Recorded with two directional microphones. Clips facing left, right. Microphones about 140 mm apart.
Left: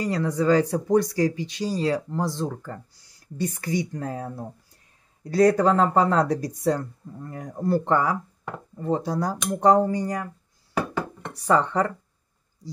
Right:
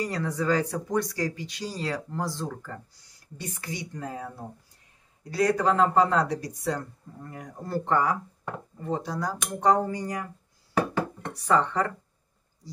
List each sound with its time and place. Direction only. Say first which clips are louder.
0.0 s speech: left 5 dB; 30° left (ahead or behind)
3.3 s speech: left 10 dB; 45° left (ahead or behind)
5.3 s speech: left 5 dB; 40° left (ahead or behind)
11.4 s speech: left 3 dB; 30° left (ahead or behind)